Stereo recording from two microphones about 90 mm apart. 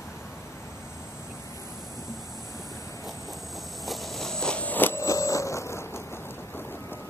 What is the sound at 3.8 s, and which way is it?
Biting, centre (ahead or behind).